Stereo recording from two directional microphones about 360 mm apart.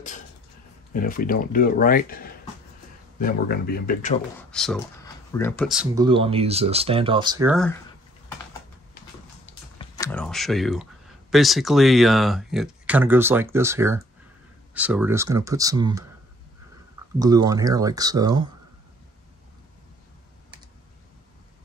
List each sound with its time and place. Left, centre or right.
0.9 s speech: left
4.4 s speech: centre
6.0 s speech: centre
9.8 s speech: centre
17.2 s speech: centre